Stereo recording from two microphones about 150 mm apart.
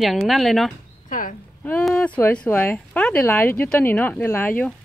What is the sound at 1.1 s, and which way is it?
Speech, 60° left (ahead or behind).